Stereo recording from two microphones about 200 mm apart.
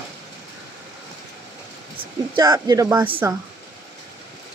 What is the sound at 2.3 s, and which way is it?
Speech, 20° right (ahead or behind).